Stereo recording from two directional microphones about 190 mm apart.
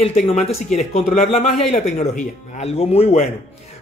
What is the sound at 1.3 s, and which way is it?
Speech, 35° left (ahead or behind).